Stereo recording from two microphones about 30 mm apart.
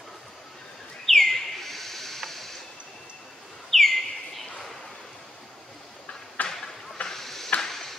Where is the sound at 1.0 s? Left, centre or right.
Centre.